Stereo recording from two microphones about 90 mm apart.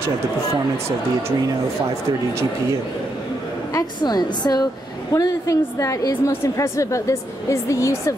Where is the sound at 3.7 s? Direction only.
50° left (ahead or behind).